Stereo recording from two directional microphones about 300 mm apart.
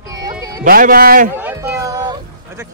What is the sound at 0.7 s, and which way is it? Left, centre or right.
Speech, right.